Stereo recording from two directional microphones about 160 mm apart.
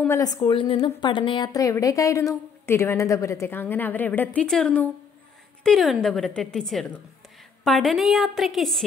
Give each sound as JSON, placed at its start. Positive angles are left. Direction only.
{"t": 0.1, "sound": "a woman's voice", "side_deg": 20}